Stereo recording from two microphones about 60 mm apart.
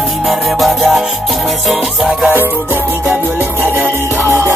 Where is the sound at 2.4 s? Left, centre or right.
Right.